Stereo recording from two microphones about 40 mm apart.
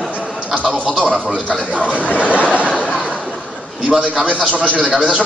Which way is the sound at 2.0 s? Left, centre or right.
Left.